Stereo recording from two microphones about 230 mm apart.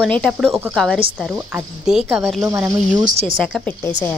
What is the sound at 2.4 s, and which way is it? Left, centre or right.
Speech, centre.